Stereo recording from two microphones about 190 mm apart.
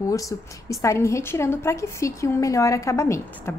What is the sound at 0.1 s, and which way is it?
A woman's voice, 15° left (ahead or behind).